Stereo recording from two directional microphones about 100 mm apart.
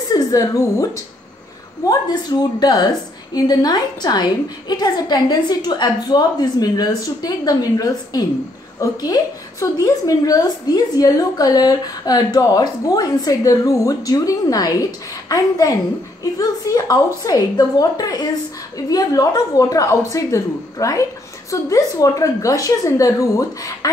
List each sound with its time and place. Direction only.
0.1 s a woman's voice: 35° left (ahead or behind)
1.9 s a woman's voice: 45° left (ahead or behind)
9.6 s a woman's voice: 35° left (ahead or behind)